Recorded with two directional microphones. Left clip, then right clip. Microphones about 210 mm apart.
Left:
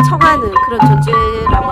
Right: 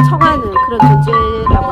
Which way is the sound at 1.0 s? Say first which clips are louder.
Even; 15° left (ahead or behind).